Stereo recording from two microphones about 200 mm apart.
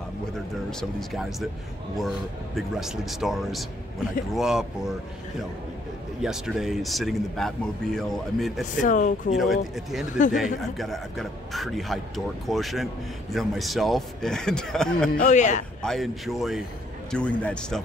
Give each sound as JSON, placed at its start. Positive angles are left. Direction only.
{"t": 0.7, "sound": "a man's voice", "side_deg": 0}
{"t": 6.2, "sound": "a man's voice", "side_deg": 0}
{"t": 8.8, "sound": "speech", "side_deg": 40}
{"t": 9.3, "sound": "a man's voice", "side_deg": 0}
{"t": 15.1, "sound": "speech", "side_deg": 35}
{"t": 15.8, "sound": "a man's voice", "side_deg": 0}